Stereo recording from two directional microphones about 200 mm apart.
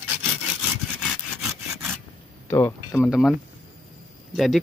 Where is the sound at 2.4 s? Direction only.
10° left (ahead or behind).